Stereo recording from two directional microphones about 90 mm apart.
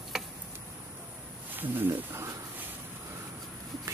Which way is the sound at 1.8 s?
30° right (ahead or behind).